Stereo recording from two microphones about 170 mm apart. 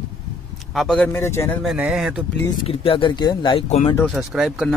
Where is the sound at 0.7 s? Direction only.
5° left (ahead or behind).